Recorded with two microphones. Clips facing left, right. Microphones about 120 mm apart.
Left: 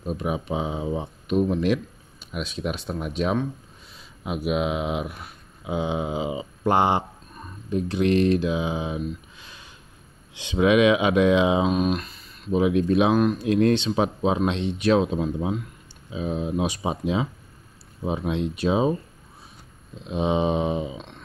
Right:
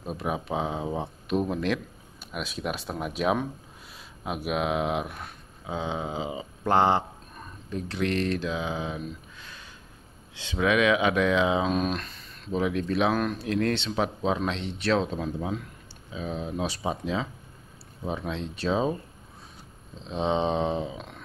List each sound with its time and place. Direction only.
0.0 s speech: centre (ahead or behind); by 9.0 s 15° left (ahead or behind)
9.4 s a sound: 15° left (ahead or behind)
10.3 s speech: 15° left (ahead or behind)
11.7 s speech: 5° left (ahead or behind)
20.0 s speech: 10° left (ahead or behind)